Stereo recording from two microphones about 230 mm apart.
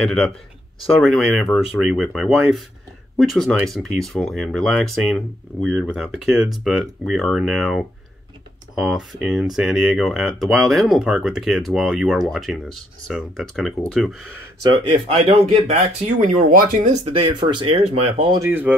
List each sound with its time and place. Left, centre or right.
1.0 s speech: centre
14.9 s speech: right
16.2 s speech: right; by 18.8 s centre